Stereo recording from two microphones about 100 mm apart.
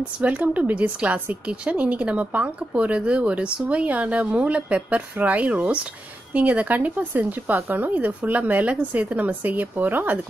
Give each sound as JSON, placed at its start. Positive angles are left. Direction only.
{"t": 0.2, "sound": "speech", "side_deg": -15}